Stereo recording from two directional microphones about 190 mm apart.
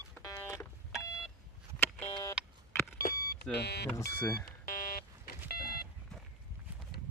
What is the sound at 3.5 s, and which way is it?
Speech, 60° left (ahead or behind).